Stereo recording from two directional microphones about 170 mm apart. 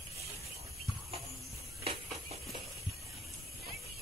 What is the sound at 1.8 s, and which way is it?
Music, 35° right (ahead or behind).